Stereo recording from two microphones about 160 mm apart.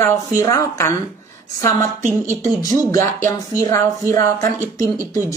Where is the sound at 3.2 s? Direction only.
15° left (ahead or behind).